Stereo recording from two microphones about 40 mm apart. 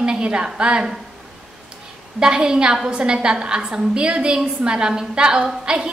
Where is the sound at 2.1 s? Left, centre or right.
Centre.